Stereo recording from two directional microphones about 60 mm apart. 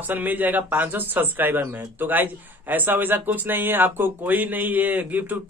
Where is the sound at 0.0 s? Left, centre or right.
Right.